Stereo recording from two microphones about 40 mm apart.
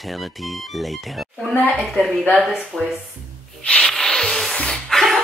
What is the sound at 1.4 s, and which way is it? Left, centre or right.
Speech, centre.